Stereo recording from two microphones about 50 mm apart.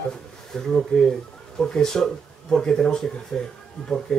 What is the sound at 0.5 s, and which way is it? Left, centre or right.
Mantra, centre.